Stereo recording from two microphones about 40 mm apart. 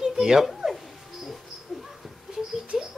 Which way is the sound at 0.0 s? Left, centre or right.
Centre.